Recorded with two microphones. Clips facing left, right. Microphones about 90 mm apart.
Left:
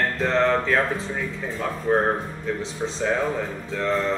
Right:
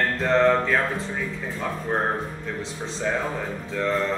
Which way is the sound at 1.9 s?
5° left (ahead or behind).